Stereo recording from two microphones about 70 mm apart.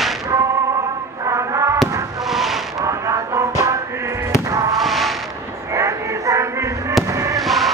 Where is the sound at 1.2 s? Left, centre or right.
Right.